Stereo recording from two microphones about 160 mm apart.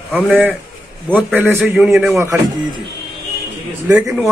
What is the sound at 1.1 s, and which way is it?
A man's voice, 10° right (ahead or behind).